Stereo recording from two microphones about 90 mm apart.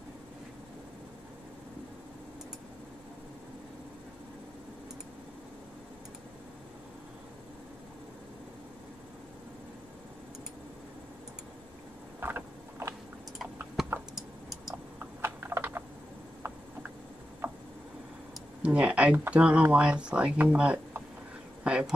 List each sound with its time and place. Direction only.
12.2 s a sound: 25° right (ahead or behind)
13.8 s computer keyboard: 5° right (ahead or behind)
14.1 s tick: 5° right (ahead or behind)
15.0 s typing: 25° right (ahead or behind)
18.6 s speech: 15° right (ahead or behind)